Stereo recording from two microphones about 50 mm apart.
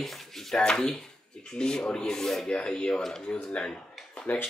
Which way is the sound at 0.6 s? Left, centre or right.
Centre.